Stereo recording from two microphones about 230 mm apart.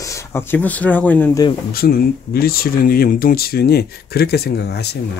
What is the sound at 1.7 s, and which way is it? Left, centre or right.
Speech, left.